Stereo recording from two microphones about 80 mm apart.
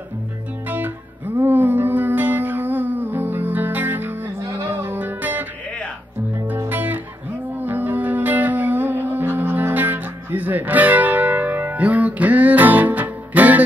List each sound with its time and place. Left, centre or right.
0.7 s music: right
6.7 s music: right